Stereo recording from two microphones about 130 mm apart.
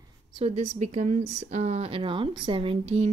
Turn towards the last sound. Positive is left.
turn(degrees=-45)  # may be behind; listen again after turning